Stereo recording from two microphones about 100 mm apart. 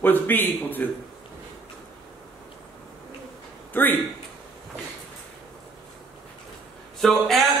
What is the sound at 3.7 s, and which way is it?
Speech, 20° left (ahead or behind).